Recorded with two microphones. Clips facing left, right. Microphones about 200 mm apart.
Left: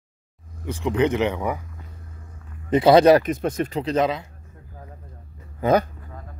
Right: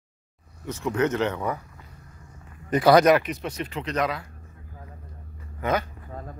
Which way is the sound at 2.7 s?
25° left (ahead or behind).